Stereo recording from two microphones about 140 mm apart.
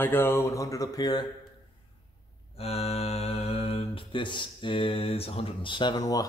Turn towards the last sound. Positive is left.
turn(degrees=25)  # may be behind; listen again after turning